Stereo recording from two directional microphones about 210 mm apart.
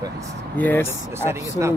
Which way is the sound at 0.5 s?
10° left (ahead or behind).